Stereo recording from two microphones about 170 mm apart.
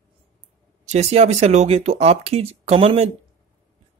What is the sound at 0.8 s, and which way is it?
Speech, 40° right (ahead or behind).